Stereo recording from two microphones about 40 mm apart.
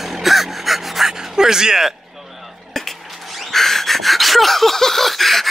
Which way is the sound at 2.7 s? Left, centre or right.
Centre.